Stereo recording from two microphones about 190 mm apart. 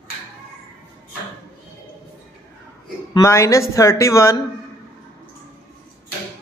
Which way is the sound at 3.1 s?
15° left (ahead or behind).